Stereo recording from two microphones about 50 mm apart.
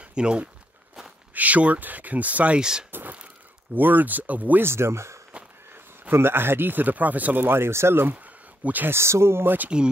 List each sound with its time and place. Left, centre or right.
0.1 s speech: centre
1.3 s speech: right
2.6 s speech: centre
2.9 s a sound: right
3.7 s speech: right
4.6 s speech: right
6.1 s speech: right
8.6 s speech: right
8.9 s speech: right